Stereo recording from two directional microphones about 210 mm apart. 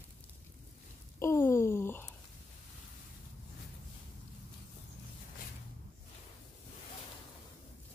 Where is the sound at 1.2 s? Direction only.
15° left (ahead or behind).